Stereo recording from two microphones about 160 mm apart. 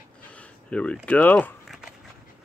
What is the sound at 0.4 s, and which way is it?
Speech, 5° left (ahead or behind).